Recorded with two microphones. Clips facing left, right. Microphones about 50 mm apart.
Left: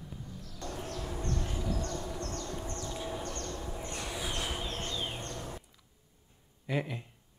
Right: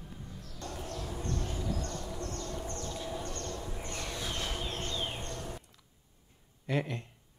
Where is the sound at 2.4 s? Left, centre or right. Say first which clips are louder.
Even; left.